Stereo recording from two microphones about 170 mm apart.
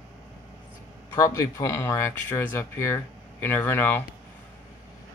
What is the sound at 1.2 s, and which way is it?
Speech, 20° left (ahead or behind).